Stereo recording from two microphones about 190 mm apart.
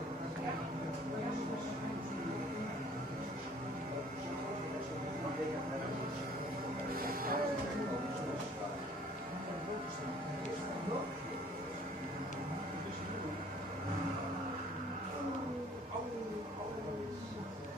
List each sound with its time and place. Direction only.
6.9 s music: 50° right (ahead or behind)